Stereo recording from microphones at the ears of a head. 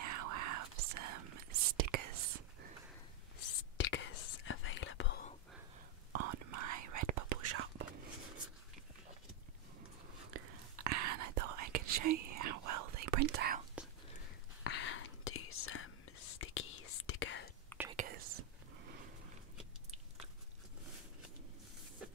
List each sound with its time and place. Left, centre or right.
0.0 s whispering: right
3.3 s whispering: left
6.1 s whispering: right
10.2 s whispering: right
14.6 s whispering: left
17.8 s whispering: right